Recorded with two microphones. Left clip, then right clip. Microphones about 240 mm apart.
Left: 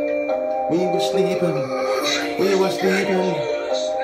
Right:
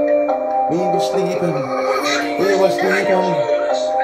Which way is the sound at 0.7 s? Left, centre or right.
Centre.